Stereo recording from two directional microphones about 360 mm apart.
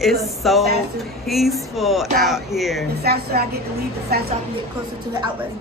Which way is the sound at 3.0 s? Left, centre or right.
Right.